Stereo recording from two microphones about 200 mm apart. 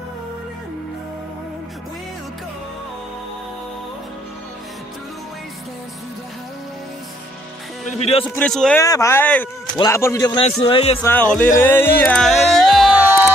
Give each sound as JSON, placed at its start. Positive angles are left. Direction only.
{"t": 8.0, "sound": "a man's voice", "side_deg": 30}
{"t": 8.4, "sound": "a man's voice", "side_deg": 5}
{"t": 8.8, "sound": "a man's voice", "side_deg": 15}
{"t": 11.0, "sound": "speech", "side_deg": 10}